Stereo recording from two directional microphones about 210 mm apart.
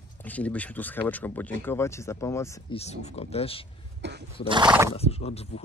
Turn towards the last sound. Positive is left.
turn(degrees=30)  # may be behind; listen again after turning